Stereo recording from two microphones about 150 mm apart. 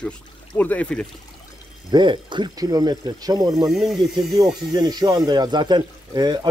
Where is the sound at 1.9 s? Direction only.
30° right (ahead or behind).